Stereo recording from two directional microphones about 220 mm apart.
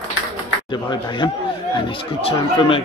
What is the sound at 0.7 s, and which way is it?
Speech, 20° left (ahead or behind).